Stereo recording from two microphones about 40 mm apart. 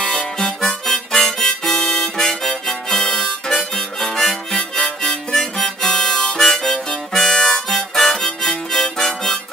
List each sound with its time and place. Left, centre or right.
0.0 s harmonica: left
0.6 s harmonica: centre
4.1 s harmonica: centre